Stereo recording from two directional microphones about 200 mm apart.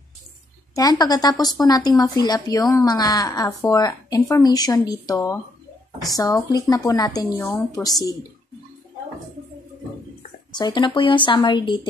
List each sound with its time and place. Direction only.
0.7 s a woman's voice: 20° left (ahead or behind)
10.5 s speech: 20° left (ahead or behind)